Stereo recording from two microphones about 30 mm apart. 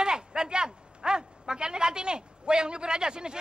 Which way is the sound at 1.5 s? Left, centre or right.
Right.